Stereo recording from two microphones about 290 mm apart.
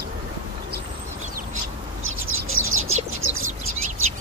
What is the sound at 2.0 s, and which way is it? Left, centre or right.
Bird, right.